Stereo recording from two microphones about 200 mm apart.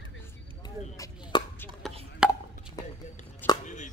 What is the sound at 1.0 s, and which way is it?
Chop, 25° left (ahead or behind).